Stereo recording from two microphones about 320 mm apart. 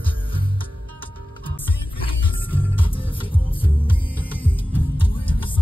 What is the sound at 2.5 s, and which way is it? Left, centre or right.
Music, centre.